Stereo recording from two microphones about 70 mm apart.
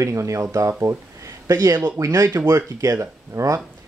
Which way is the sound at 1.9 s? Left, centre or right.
Right.